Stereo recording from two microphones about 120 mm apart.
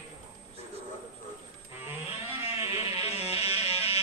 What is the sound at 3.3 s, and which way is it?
Music, 55° left (ahead or behind).